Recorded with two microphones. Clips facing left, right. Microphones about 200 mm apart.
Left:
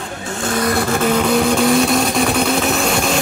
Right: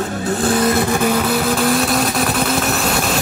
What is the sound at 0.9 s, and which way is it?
Vehicle, 10° right (ahead or behind).